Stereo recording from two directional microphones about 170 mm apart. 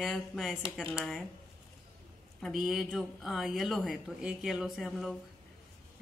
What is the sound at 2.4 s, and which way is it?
Speech, centre (ahead or behind).